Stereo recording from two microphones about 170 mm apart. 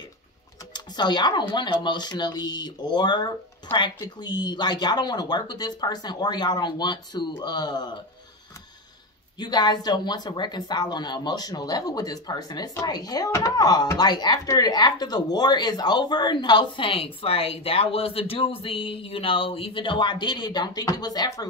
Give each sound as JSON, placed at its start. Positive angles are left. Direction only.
{"t": 0.7, "sound": "speech", "side_deg": 25}
{"t": 9.4, "sound": "speech", "side_deg": 25}